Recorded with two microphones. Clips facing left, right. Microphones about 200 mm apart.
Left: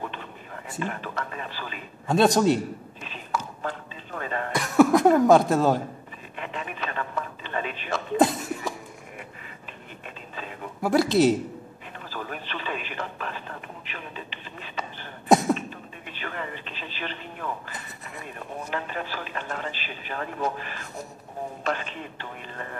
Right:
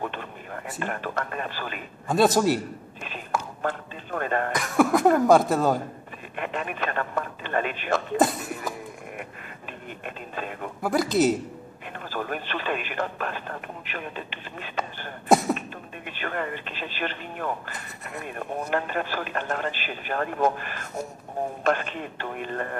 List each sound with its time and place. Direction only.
0.7 s a man's voice: 55° right (ahead or behind)
2.0 s speech: centre (ahead or behind)
3.0 s a sound: 55° right (ahead or behind)
4.6 s speech: centre (ahead or behind)
6.3 s radio: 55° right (ahead or behind)
8.2 s a sound: centre (ahead or behind)
10.0 s radio: 55° right (ahead or behind)
10.8 s speech: centre (ahead or behind)
12.1 s a man's voice: 55° right (ahead or behind)
15.2 s a sound: centre (ahead or behind)
16.1 s a man's voice: 55° right (ahead or behind)